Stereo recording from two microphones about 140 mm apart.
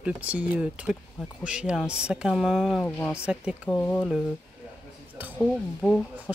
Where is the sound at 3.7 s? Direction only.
15° left (ahead or behind).